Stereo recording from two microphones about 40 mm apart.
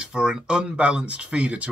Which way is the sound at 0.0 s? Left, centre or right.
Right.